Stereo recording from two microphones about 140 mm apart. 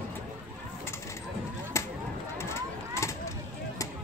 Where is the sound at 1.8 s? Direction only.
20° left (ahead or behind).